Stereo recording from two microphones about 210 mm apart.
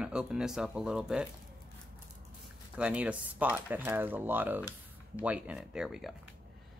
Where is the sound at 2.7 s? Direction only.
5° right (ahead or behind).